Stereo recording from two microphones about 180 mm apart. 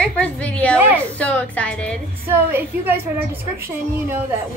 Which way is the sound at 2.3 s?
10° right (ahead or behind).